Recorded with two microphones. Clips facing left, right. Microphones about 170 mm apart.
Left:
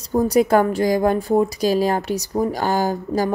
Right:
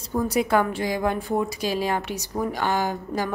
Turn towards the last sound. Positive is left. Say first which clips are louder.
# left 6 dB
turn(degrees=40)  # may be behind; listen again after turning